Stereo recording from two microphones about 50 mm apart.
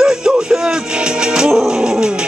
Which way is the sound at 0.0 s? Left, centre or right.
Centre.